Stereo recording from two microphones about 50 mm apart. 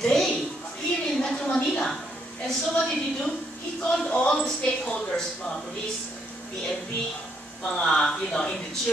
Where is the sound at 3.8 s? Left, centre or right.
Left.